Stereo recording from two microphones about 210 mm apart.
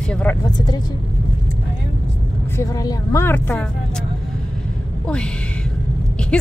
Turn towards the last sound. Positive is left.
turn(degrees=5)  # may be behind; listen again after turning